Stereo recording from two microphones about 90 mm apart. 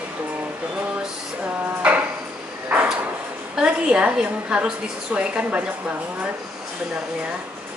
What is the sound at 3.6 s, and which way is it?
A woman's voice, 10° right (ahead or behind).